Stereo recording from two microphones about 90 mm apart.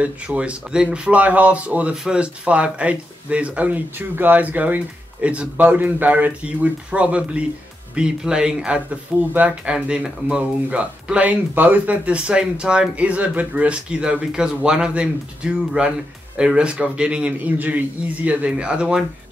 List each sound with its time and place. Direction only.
0.0 s speech: 15° right (ahead or behind)
9.8 s speech: 10° right (ahead or behind)